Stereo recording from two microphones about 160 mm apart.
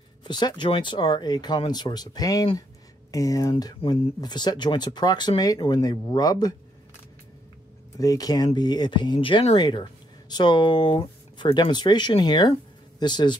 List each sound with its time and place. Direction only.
0.2 s speech: 25° left (ahead or behind)
8.0 s speech: 20° left (ahead or behind)